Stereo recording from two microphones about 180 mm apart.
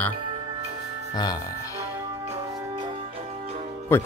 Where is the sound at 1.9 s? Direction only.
15° right (ahead or behind).